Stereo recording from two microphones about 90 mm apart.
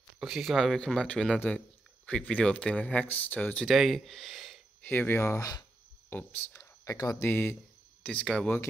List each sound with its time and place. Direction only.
0.2 s speech: 5° right (ahead or behind)
0.7 s speech: 10° left (ahead or behind)
3.6 s speech: centre (ahead or behind)
4.8 s speech: 25° left (ahead or behind)
6.6 s a sound: 40° left (ahead or behind)
7.2 s speech: 20° left (ahead or behind)